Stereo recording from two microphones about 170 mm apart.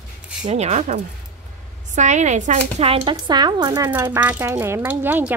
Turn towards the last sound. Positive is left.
turn(degrees=-10)  # may be behind; listen again after turning